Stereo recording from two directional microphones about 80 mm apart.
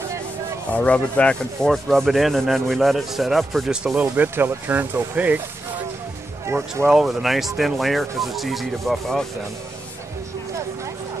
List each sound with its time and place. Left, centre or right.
0.7 s rub: centre
3.7 s speech: centre
4.0 s speech: right
6.4 s speech: right
6.9 s rub: centre